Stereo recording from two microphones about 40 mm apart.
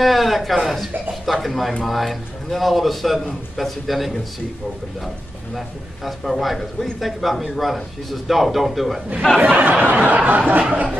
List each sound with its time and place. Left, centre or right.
0.0 s speech: centre
6.0 s speech: centre
9.4 s a sound: right